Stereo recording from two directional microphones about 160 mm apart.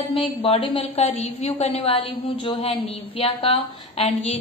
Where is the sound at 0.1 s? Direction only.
35° left (ahead or behind).